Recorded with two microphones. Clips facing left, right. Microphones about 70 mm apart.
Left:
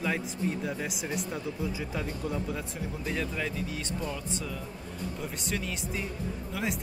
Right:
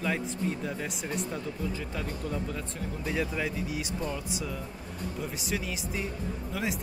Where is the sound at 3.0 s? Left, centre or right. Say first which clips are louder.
Right 2 dB; centre.